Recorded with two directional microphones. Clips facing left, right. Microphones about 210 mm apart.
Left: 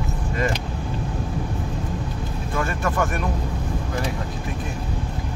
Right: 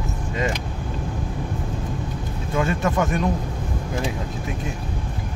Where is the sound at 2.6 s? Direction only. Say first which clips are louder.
Right 3 dB; 20° right (ahead or behind).